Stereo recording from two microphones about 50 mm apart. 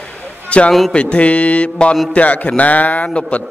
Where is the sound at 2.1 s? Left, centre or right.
Left.